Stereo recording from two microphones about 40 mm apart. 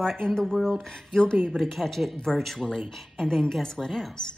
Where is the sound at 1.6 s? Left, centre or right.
Centre.